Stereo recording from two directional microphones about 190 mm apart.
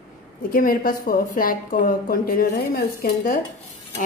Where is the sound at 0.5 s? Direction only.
50° left (ahead or behind).